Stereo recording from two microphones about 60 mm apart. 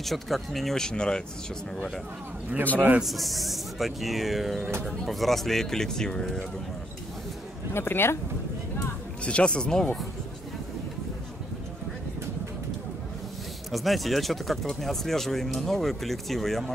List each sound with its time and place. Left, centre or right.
0.0 s speech: centre
3.0 s speech: centre
7.7 s speech: left
9.2 s speech: centre
13.7 s speech: centre